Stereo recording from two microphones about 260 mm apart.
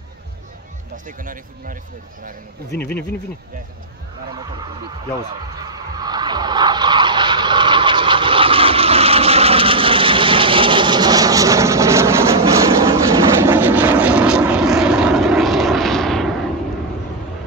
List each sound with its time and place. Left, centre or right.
1.0 s speech: right
2.8 s speech: centre
5.6 s vehicle: centre